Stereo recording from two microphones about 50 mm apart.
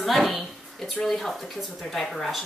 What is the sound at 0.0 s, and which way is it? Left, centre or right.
A woman's voice, centre.